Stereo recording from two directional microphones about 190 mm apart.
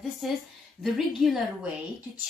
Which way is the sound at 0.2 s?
Centre (ahead or behind).